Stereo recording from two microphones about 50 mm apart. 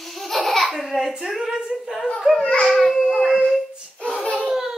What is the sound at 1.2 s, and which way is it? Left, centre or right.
Speech, centre.